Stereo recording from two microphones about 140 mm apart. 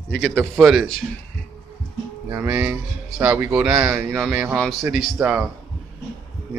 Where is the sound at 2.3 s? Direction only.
15° right (ahead or behind).